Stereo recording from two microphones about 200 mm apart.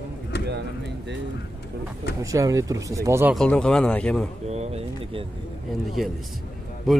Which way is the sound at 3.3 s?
5° left (ahead or behind).